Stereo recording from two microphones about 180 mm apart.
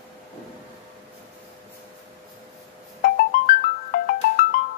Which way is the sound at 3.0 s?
55° left (ahead or behind).